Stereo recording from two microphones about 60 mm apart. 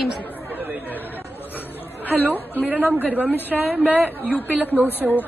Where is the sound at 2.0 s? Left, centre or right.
Right.